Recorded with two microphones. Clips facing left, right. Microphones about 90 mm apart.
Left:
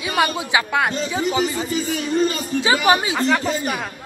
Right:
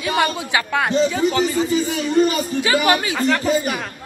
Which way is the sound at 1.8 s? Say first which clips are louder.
Right 3 dB; 15° right (ahead or behind).